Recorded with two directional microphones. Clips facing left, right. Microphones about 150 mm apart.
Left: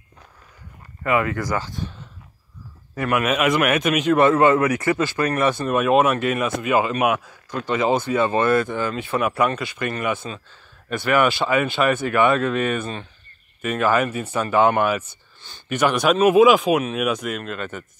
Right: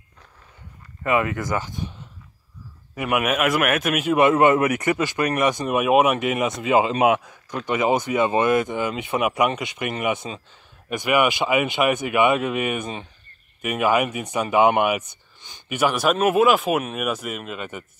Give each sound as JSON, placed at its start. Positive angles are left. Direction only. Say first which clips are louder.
{"t": 1.0, "sound": "speech", "louder": "left 1 dB", "side_deg": -20}
{"t": 3.0, "sound": "speech", "louder": "left 1 dB", "side_deg": -10}